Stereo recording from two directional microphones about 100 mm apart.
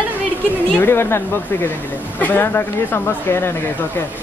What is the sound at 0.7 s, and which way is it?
Speech, 25° left (ahead or behind).